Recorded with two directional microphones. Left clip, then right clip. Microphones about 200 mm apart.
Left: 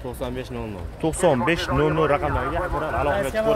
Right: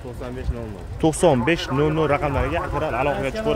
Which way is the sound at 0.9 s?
20° right (ahead or behind).